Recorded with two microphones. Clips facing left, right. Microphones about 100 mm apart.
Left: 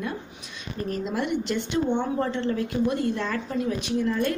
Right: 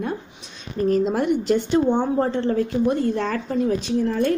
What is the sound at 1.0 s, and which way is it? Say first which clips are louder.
A woman's voice: right 6 dB; 45° right (ahead or behind).